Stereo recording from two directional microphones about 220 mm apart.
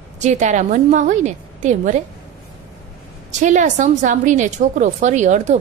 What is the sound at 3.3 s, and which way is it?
A woman's voice, 35° right (ahead or behind).